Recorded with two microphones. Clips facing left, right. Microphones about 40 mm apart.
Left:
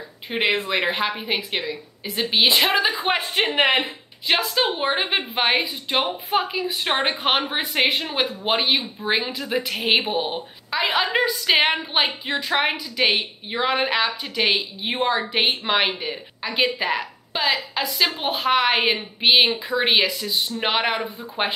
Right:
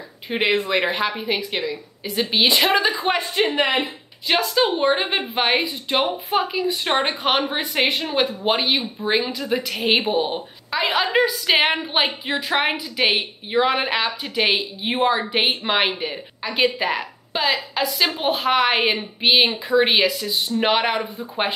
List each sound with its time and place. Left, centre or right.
0.3 s a woman's voice: centre
3.1 s a woman's voice: left
3.4 s a woman's voice: left
4.3 s a woman's voice: centre